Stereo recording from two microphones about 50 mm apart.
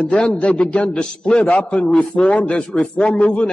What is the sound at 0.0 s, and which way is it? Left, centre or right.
A man's voice, centre.